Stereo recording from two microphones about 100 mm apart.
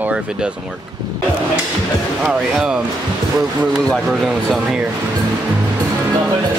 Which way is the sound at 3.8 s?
5° left (ahead or behind).